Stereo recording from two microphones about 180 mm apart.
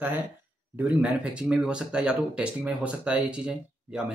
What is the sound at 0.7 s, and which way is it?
Speech, 5° right (ahead or behind).